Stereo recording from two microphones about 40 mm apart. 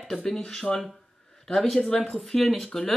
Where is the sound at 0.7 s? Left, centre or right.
Centre.